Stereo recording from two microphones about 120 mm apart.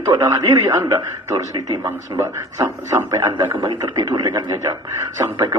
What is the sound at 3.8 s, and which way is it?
A man's voice, 30° right (ahead or behind).